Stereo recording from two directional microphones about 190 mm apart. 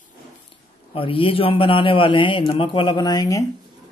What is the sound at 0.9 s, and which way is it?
A man's voice, 30° left (ahead or behind).